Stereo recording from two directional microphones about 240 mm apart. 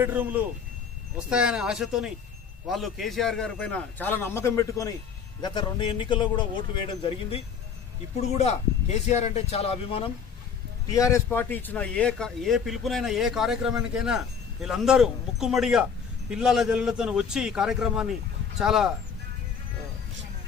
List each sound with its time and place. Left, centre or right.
0.0 s a man's voice: centre